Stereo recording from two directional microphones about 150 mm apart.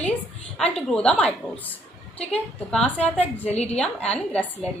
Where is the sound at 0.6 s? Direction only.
5° left (ahead or behind).